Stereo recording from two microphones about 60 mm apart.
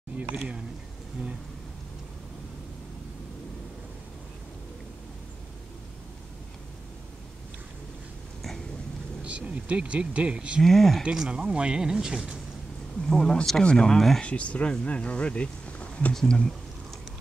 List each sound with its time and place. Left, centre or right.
9.2 s speech: right
10.6 s speech: centre
11.1 s speech: centre
13.0 s speech: centre
14.2 s speech: left